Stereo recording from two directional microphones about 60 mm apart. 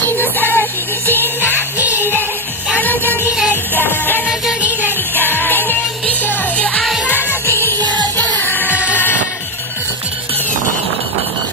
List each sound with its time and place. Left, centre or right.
0.0 s music: left
1.8 s music: right
2.8 s music: left
7.4 s music: left
7.9 s music: left